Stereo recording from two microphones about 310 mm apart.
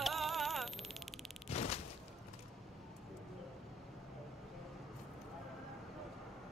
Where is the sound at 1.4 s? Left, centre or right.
Centre.